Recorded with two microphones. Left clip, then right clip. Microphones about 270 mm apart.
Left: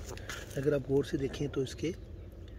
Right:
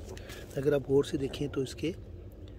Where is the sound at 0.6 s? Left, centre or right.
Centre.